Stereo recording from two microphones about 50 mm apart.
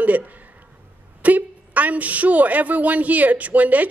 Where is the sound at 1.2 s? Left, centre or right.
Right.